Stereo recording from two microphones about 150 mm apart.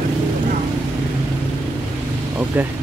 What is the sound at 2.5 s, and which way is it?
Speech, 10° right (ahead or behind).